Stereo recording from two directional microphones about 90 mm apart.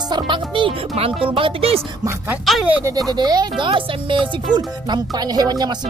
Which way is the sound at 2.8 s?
40° right (ahead or behind).